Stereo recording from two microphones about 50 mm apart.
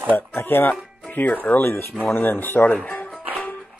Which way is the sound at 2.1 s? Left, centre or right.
Left.